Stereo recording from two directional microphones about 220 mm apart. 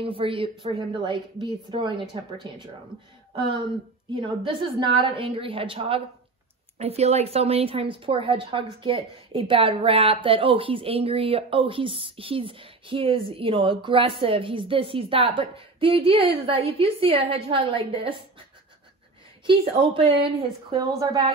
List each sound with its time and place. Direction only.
0.0 s speech: 25° right (ahead or behind)
4.1 s speech: 20° right (ahead or behind)
19.4 s speech: 25° right (ahead or behind)